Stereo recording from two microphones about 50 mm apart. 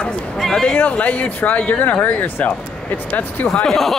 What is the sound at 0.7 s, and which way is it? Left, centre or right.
Speech, left.